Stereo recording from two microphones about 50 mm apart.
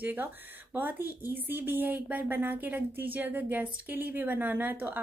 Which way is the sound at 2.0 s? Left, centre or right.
Right.